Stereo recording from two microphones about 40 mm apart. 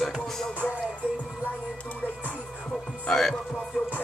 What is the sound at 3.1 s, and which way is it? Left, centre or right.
Music, centre.